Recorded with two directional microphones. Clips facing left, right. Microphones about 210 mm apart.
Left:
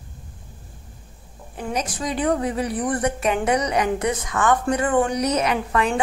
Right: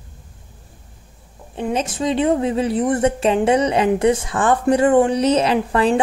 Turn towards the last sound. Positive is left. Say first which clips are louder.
# right 5 dB
turn(degrees=-30)  # may be behind; listen again after turning